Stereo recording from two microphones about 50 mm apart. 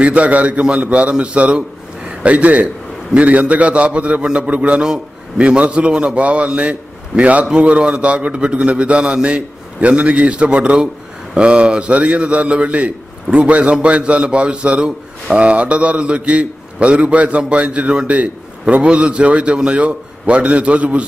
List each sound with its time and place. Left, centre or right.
0.0 s a man's voice: right